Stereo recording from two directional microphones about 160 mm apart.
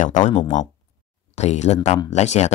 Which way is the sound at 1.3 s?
45° left (ahead or behind).